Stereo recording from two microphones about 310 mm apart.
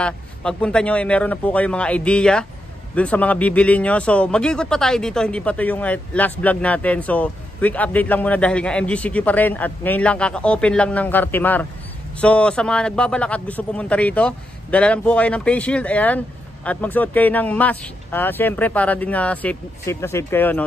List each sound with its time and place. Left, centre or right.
0.0 s a man's voice: centre